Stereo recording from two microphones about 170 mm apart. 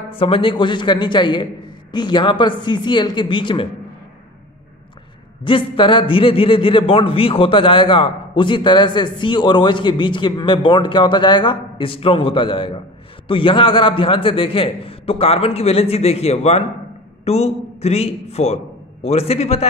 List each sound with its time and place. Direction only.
0.2 s a man's voice: 30° left (ahead or behind)
5.4 s a man's voice: 30° left (ahead or behind)